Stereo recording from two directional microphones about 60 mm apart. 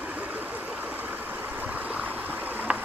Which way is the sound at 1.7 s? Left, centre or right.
Right.